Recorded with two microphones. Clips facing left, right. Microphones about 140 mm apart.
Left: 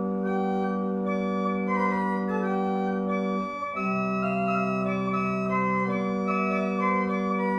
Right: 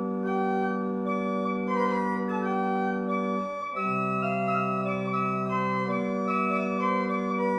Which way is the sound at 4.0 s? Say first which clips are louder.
Left 1 dB; centre (ahead or behind).